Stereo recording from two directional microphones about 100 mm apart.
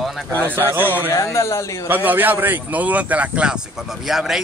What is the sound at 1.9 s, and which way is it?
Speech, 20° right (ahead or behind).